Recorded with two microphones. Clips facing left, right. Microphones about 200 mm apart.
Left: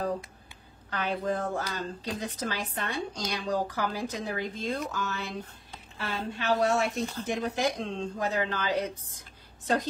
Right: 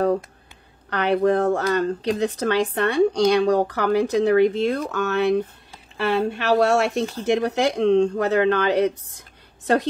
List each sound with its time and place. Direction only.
0.8 s a woman's voice: 75° right (ahead or behind)